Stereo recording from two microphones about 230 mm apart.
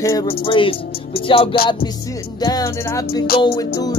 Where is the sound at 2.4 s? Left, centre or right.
Centre.